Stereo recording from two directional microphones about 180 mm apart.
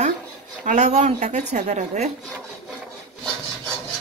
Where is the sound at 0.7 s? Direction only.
40° right (ahead or behind).